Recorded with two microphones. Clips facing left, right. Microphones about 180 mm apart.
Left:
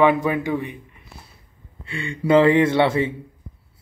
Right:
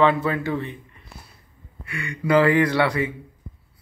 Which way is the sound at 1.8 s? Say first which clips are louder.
Left 3 dB; 25° left (ahead or behind).